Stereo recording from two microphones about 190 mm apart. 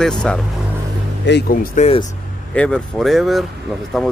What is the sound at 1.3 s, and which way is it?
Speech, 60° left (ahead or behind).